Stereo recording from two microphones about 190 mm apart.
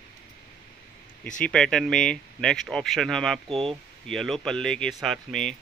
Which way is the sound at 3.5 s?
30° right (ahead or behind).